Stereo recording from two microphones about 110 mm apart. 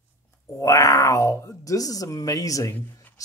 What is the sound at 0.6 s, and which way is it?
Speech, 30° left (ahead or behind).